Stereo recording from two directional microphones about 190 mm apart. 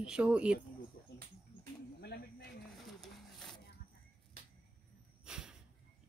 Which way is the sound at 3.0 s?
Centre (ahead or behind).